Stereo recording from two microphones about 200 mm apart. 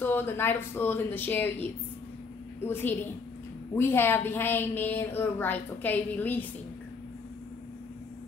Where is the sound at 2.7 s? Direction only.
10° left (ahead or behind).